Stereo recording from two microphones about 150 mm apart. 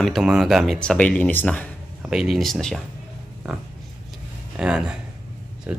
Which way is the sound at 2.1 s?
Centre (ahead or behind).